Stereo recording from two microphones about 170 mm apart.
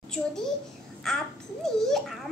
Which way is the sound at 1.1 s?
Centre (ahead or behind).